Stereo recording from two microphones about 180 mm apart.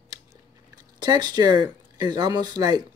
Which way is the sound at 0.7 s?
20° right (ahead or behind).